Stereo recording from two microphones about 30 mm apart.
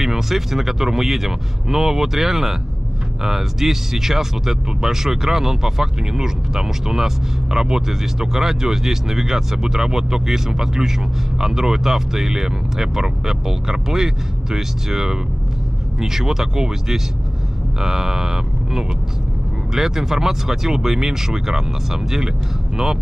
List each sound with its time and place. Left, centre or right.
0.0 s speech: centre